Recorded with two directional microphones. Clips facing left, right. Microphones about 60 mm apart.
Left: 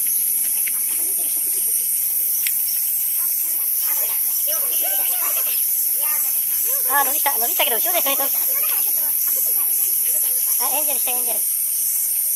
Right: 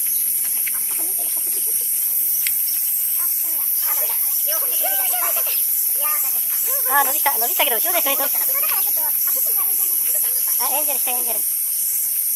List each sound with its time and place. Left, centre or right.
4.5 s snake: right
6.6 s speech: right
6.9 s speech: centre
8.2 s speech: right
10.6 s speech: centre